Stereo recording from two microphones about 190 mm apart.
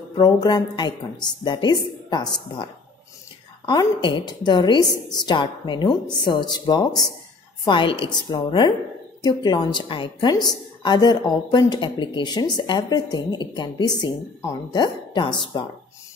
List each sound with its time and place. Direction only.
0.1 s a woman's voice: 20° left (ahead or behind)